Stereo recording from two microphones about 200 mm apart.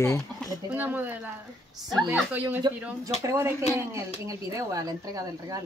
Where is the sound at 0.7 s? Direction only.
10° right (ahead or behind).